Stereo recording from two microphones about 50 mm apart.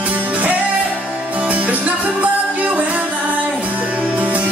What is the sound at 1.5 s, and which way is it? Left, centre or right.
Music, right.